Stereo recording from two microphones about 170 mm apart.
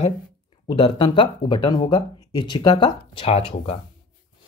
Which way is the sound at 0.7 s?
30° left (ahead or behind).